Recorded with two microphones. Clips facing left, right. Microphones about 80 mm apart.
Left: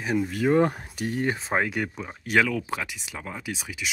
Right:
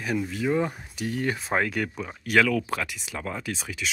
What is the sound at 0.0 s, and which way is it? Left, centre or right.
Speech, left.